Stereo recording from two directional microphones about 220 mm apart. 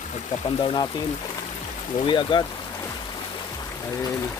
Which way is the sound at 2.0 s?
20° left (ahead or behind).